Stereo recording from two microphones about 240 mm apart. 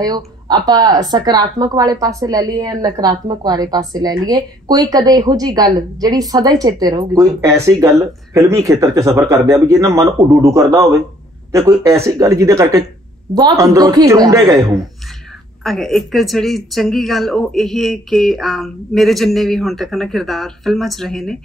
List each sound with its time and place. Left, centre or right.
0.0 s speech: centre
15.6 s speech: centre